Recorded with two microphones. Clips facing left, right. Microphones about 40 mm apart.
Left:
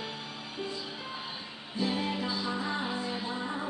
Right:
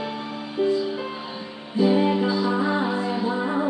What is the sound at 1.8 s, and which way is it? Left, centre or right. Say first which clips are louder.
Music: right 12 dB; centre.